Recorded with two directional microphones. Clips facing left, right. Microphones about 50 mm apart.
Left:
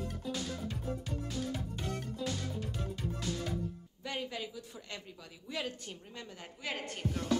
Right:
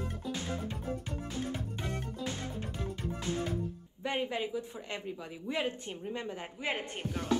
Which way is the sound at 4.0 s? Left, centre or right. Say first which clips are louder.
Right 6 dB; right.